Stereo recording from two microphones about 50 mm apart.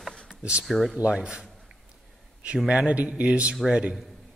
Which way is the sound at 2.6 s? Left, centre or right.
Right.